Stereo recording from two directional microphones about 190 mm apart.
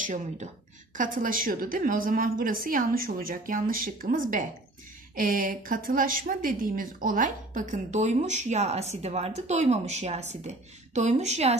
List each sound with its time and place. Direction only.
0.0 s a woman's voice: 40° right (ahead or behind)